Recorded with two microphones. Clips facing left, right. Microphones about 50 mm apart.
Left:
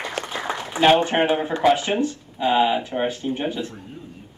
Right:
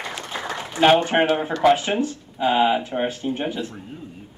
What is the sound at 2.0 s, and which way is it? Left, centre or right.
Speech, right.